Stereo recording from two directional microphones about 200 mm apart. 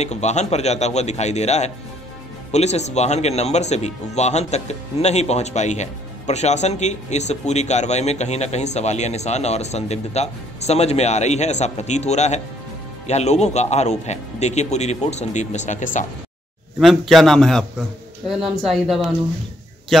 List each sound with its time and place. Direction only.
0.0 s speech: 35° left (ahead or behind)
16.8 s a man's voice: centre (ahead or behind)